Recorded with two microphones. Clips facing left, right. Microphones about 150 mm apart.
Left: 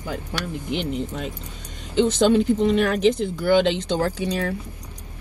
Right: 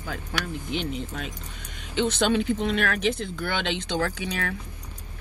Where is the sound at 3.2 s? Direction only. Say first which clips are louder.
Left 11 dB; 15° left (ahead or behind).